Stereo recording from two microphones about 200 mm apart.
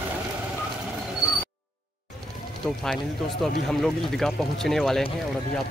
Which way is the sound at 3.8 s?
Centre (ahead or behind).